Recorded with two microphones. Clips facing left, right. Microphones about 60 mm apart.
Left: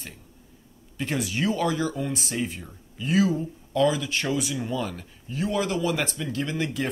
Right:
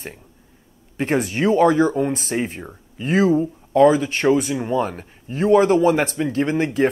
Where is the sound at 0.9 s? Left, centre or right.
Right.